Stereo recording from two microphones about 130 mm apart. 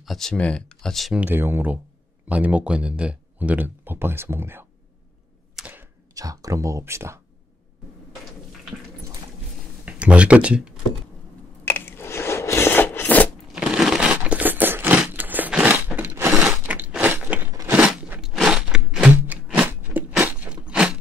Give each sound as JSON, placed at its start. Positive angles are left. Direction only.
{"t": 0.0, "sound": "speech", "side_deg": 0}
{"t": 1.2, "sound": "speech", "side_deg": -15}
{"t": 5.6, "sound": "a sound", "side_deg": -15}
{"t": 6.1, "sound": "speech", "side_deg": -25}
{"t": 9.8, "sound": "speech", "side_deg": -10}
{"t": 11.6, "sound": "a sound", "side_deg": 15}
{"t": 13.5, "sound": "a sound", "side_deg": -5}
{"t": 16.4, "sound": "biting", "side_deg": -10}
{"t": 17.5, "sound": "biting", "side_deg": -25}
{"t": 17.7, "sound": "crunch", "side_deg": -10}
{"t": 19.4, "sound": "a sound", "side_deg": -10}
{"t": 20.2, "sound": "crunch", "side_deg": -10}